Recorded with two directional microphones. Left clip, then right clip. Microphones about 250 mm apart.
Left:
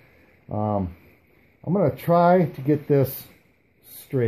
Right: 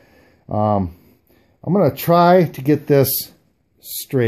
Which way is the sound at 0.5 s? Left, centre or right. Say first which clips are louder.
Right 8 dB; right.